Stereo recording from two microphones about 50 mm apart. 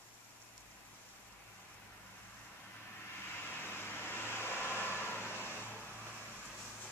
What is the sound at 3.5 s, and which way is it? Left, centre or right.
Vehicle, left.